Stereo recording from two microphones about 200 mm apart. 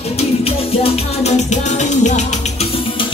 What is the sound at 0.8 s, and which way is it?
Music, 35° left (ahead or behind).